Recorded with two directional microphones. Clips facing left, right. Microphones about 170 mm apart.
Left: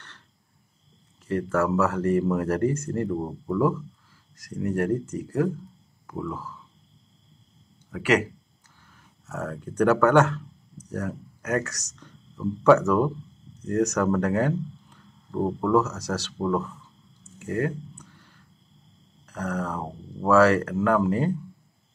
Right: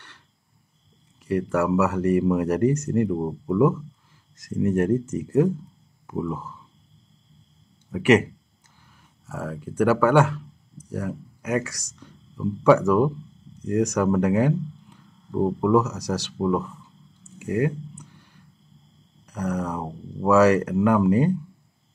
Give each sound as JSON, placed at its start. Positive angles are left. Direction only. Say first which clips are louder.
{"t": 1.2, "sound": "speech", "louder": "right 2 dB", "side_deg": -15}
{"t": 4.4, "sound": "speech", "louder": "right 4 dB", "side_deg": -20}
{"t": 7.9, "sound": "speech", "louder": "right 5 dB", "side_deg": -20}
{"t": 8.8, "sound": "speech", "louder": "right 1 dB", "side_deg": -10}
{"t": 17.4, "sound": "a sound", "louder": "right 3 dB", "side_deg": -15}
{"t": 19.2, "sound": "speech", "louder": "right 2 dB", "side_deg": -15}